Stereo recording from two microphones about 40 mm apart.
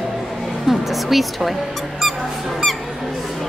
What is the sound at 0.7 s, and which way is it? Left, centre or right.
Music, centre.